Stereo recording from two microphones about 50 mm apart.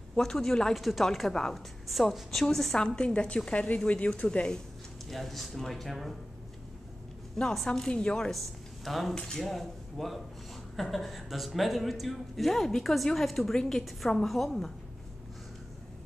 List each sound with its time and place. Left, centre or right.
0.1 s a woman's voice: centre
3.0 s a woman's voice: left
5.1 s speech: centre
7.6 s a woman's voice: centre
8.3 s a woman's voice: centre